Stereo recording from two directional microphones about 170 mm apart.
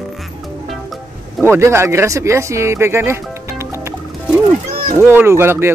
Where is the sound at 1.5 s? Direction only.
15° right (ahead or behind).